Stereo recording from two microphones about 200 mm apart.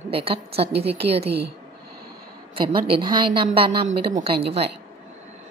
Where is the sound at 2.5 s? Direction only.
25° right (ahead or behind).